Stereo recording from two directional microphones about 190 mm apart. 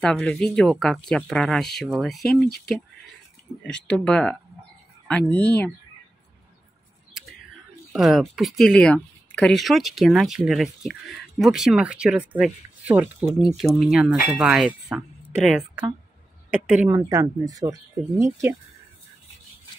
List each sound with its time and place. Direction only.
0.0 s speech: 5° left (ahead or behind)
2.4 s speech: 55° left (ahead or behind)
3.9 s speech: 5° left (ahead or behind)
7.9 s speech: centre (ahead or behind)
13.7 s speech: centre (ahead or behind)